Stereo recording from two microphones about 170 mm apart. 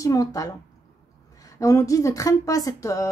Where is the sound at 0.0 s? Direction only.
20° left (ahead or behind).